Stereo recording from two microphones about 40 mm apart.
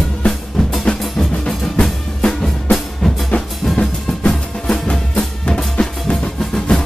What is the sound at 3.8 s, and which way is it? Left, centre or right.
Music, left.